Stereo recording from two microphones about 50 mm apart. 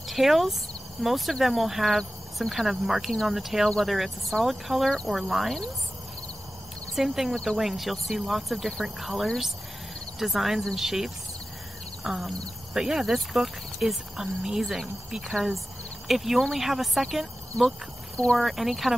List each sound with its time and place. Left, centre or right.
0.0 s speech: centre
7.0 s speech: centre
18.1 s speech: centre
18.4 s speech: centre